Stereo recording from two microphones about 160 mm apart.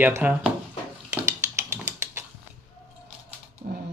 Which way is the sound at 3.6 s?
45° right (ahead or behind).